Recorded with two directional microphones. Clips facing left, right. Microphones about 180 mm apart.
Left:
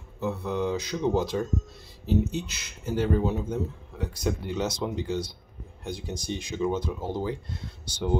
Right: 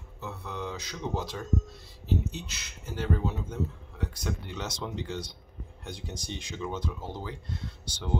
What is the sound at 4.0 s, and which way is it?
Speech, 10° left (ahead or behind).